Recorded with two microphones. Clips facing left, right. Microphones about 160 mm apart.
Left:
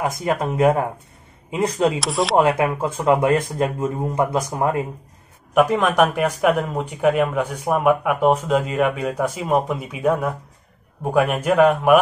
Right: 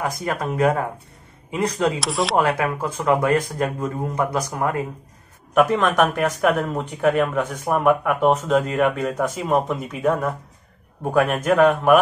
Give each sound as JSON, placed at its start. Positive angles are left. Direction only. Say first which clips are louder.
{"t": 0.0, "sound": "speech", "louder": "left 3 dB", "side_deg": 15}
{"t": 2.0, "sound": "speech", "louder": "left 1 dB", "side_deg": 0}
{"t": 2.3, "sound": "speech", "louder": "left 4 dB", "side_deg": 25}
{"t": 5.5, "sound": "speech", "louder": "left 1 dB", "side_deg": 10}